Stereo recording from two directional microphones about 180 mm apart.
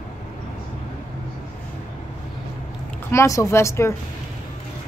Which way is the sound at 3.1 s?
15° left (ahead or behind).